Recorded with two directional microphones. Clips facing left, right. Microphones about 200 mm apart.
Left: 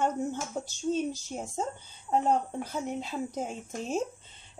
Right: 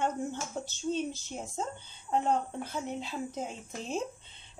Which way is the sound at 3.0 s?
45° left (ahead or behind).